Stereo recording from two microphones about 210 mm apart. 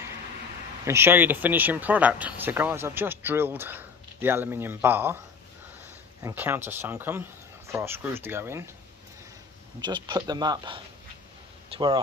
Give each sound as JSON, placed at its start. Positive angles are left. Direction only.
{"t": 0.8, "sound": "speech", "side_deg": -10}
{"t": 6.2, "sound": "speech", "side_deg": -10}
{"t": 9.8, "sound": "speech", "side_deg": -20}